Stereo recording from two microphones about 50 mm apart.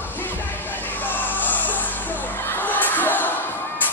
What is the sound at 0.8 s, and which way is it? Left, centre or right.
Music, left.